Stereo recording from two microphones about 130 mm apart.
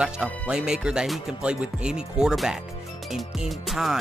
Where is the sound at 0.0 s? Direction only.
5° right (ahead or behind).